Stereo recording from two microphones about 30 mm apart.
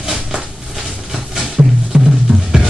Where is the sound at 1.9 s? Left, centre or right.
Right.